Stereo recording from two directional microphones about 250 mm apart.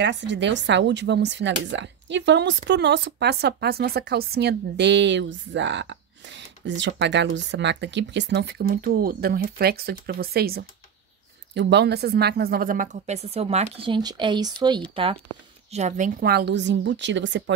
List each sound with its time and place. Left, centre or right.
0.0 s speech: right; by 14.8 s centre
15.7 s speech: right